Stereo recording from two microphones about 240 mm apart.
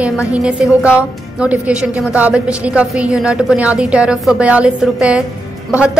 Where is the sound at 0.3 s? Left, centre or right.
Centre.